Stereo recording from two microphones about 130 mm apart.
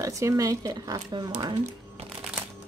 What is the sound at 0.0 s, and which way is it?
A woman's voice, 25° right (ahead or behind).